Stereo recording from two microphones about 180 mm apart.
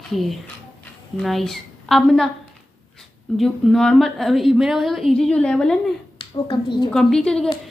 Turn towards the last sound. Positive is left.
turn(degrees=5)  # may be behind; listen again after turning